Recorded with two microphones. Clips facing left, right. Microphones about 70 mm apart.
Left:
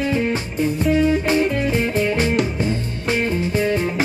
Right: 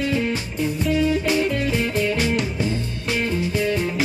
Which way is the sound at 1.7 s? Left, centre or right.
Left.